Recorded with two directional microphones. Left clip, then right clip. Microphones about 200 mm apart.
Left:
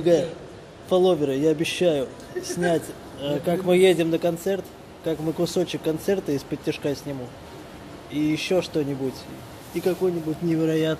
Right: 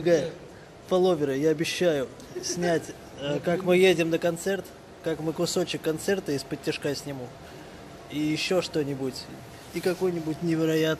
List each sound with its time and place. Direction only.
0.1 s a man's voice: centre (ahead or behind)
10.1 s speech: 15° right (ahead or behind)
10.5 s a man's voice: 5° right (ahead or behind)